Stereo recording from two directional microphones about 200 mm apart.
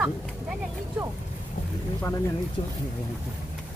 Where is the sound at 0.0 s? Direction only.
5° right (ahead or behind).